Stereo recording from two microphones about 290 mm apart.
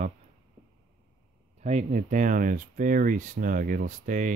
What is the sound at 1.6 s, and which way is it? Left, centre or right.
Speech, right.